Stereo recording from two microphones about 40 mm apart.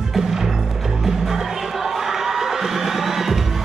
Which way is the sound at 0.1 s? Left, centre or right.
Centre.